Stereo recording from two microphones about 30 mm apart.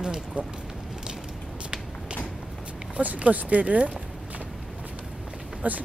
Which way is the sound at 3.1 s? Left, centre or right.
Right.